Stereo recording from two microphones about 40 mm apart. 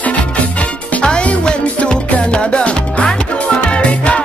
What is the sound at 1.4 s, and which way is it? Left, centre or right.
Music, left.